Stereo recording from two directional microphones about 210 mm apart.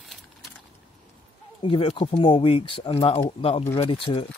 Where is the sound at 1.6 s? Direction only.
25° left (ahead or behind).